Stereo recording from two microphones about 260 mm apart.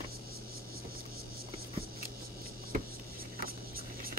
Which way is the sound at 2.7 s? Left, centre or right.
Right.